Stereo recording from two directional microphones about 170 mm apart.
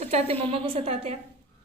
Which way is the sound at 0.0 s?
35° right (ahead or behind).